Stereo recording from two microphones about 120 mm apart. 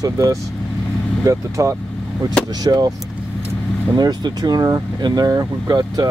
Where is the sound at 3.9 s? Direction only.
35° right (ahead or behind).